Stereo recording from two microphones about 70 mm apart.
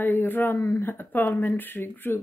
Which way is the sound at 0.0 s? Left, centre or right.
Left.